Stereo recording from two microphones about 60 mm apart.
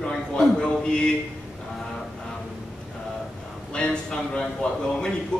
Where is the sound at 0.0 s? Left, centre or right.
Centre.